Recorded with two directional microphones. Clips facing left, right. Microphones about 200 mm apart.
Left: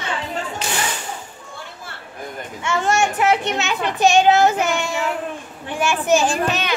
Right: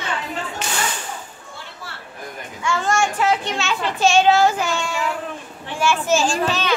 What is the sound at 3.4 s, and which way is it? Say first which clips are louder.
A child's voice: left 2 dB; 20° left (ahead or behind).